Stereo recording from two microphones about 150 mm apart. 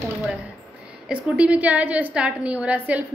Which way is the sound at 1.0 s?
5° right (ahead or behind).